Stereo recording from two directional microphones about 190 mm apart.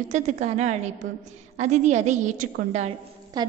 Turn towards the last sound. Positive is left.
turn(degrees=-20)  # may be behind; listen again after turning